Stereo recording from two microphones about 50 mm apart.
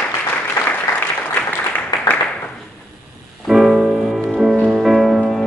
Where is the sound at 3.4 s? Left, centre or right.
Centre.